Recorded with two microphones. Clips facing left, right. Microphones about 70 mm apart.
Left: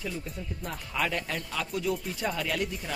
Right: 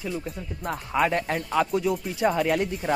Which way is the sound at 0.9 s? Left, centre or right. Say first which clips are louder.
Right 7 dB; right.